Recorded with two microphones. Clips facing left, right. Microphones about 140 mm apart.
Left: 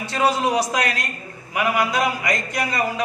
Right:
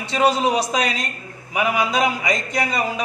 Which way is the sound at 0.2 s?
20° right (ahead or behind).